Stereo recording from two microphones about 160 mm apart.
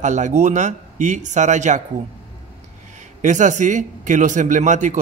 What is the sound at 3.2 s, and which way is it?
A man's voice, 50° right (ahead or behind).